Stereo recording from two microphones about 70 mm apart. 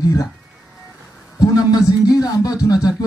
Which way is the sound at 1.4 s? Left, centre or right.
Left.